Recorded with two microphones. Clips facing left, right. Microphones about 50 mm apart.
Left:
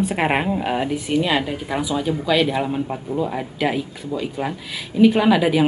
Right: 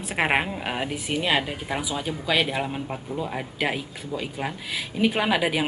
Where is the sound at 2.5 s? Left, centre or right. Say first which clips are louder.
Left 6 dB; centre.